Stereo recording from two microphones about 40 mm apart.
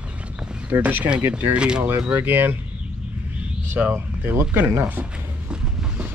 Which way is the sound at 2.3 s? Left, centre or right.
Right.